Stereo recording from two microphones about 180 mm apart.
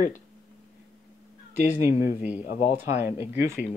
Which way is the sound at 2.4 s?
40° left (ahead or behind).